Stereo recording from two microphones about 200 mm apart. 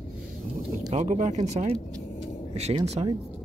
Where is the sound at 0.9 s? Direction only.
35° right (ahead or behind).